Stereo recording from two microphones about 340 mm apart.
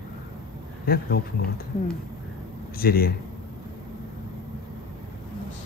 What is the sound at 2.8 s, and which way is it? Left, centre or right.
Speech, left.